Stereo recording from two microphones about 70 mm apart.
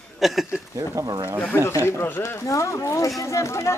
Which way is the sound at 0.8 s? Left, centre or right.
Right.